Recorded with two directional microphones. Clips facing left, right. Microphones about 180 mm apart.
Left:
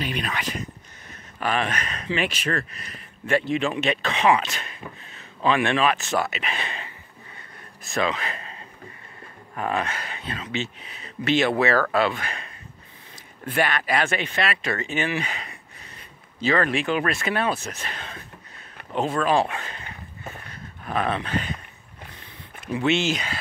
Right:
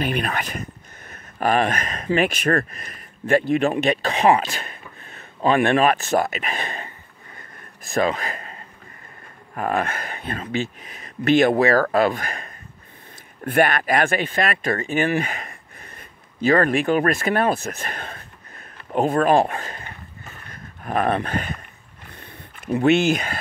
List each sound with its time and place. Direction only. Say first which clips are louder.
0.0 s speech: right 4 dB; 55° right (ahead or behind); by 4.6 s 35° right (ahead or behind)
4.6 s a sound: left 1 dB; 50° right (ahead or behind)
7.8 s speech: right 4 dB; 50° right (ahead or behind)
9.6 s speech: right 3 dB; 50° right (ahead or behind)
20.5 s dog: right 4 dB; 50° right (ahead or behind)
22.1 s a sound: right 2 dB; 50° right (ahead or behind)